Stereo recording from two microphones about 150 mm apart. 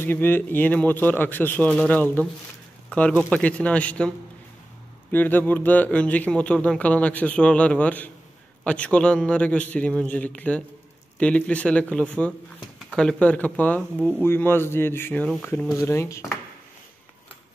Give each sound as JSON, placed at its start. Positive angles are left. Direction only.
{"t": 0.0, "sound": "speech", "side_deg": 15}
{"t": 5.1, "sound": "speech", "side_deg": 10}